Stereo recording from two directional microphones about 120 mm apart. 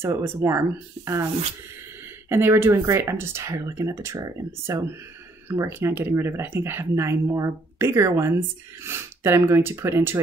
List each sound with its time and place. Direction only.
0.0 s speech: 20° right (ahead or behind)
2.2 s speech: 20° right (ahead or behind)